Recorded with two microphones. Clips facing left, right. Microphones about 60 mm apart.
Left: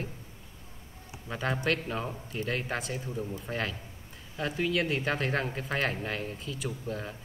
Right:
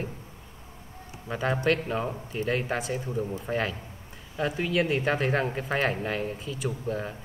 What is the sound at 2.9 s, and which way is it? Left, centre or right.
Speech, centre.